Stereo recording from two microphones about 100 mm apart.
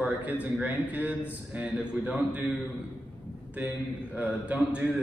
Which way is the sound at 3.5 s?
15° right (ahead or behind).